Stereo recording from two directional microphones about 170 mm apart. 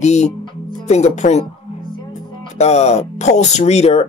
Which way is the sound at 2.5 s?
40° left (ahead or behind).